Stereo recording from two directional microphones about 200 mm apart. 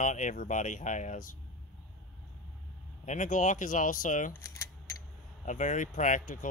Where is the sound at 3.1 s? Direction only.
40° left (ahead or behind).